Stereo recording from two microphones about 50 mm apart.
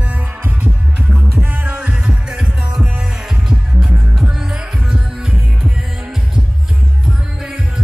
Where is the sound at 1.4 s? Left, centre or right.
Right.